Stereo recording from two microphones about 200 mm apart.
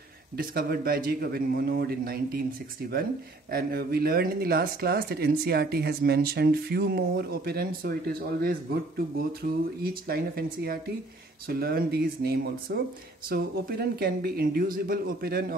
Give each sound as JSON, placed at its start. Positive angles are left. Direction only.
{"t": 0.4, "sound": "speech", "side_deg": -45}
{"t": 3.5, "sound": "speech", "side_deg": -50}